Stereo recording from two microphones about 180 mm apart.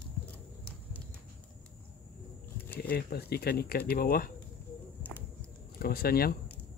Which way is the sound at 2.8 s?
60° left (ahead or behind).